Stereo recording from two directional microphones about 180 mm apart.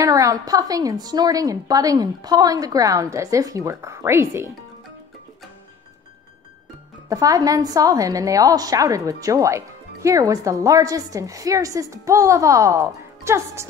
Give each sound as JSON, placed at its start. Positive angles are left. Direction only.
{"t": 0.0, "sound": "a woman's voice", "side_deg": -20}
{"t": 7.1, "sound": "a woman's voice", "side_deg": -20}